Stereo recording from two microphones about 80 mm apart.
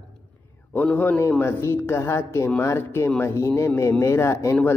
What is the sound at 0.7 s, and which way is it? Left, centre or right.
A man's voice, centre.